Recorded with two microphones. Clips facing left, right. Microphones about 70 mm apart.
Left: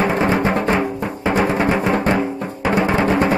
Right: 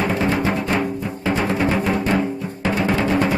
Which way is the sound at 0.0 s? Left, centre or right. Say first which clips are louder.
Left 3 dB; left.